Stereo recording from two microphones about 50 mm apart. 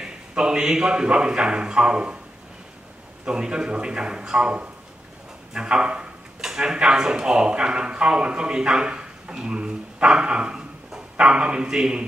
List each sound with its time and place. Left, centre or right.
0.0 s a man's voice: centre
3.3 s a man's voice: centre